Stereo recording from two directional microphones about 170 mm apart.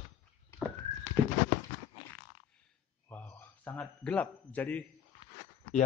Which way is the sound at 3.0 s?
10° left (ahead or behind).